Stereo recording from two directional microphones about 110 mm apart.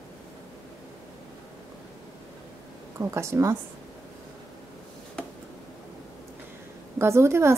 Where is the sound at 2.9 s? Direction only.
25° right (ahead or behind).